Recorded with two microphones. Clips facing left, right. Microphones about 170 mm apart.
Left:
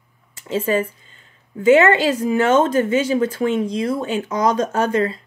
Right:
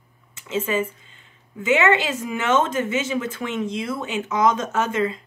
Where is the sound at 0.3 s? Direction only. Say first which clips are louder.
Left 4 dB; 35° left (ahead or behind).